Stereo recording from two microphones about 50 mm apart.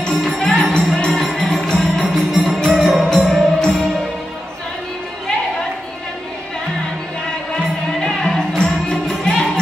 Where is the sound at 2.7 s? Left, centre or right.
Centre.